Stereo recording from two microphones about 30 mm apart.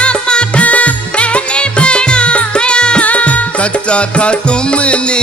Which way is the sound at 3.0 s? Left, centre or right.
Left.